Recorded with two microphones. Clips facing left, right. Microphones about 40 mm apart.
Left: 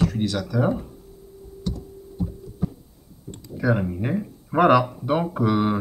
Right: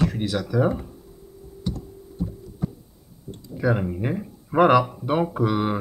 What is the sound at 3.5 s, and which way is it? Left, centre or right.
Speech, centre.